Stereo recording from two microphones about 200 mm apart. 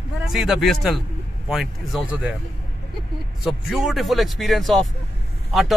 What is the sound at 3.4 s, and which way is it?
A man's voice, centre (ahead or behind).